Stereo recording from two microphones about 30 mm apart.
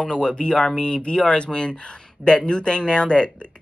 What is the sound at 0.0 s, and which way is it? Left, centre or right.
Speech, left.